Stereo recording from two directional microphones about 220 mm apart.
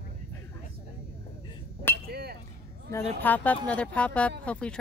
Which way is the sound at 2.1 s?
45° right (ahead or behind).